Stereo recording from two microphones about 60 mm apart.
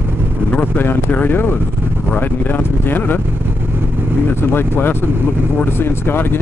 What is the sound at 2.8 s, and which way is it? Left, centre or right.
Speech, left.